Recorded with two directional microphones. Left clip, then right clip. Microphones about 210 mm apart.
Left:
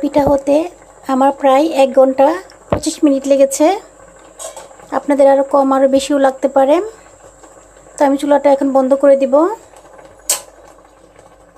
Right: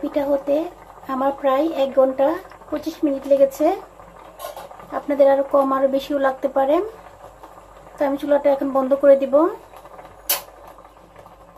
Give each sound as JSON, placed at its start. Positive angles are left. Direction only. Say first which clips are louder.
{"t": 0.0, "sound": "speech", "louder": "left 8 dB", "side_deg": 35}
{"t": 4.9, "sound": "speech", "louder": "left 6 dB", "side_deg": 35}
{"t": 8.0, "sound": "speech", "louder": "left 7 dB", "side_deg": 35}